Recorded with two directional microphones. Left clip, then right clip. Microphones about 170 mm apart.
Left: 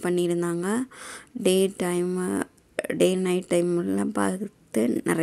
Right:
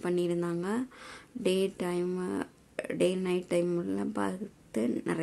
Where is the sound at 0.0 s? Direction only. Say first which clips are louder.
Left 6 dB; 30° left (ahead or behind).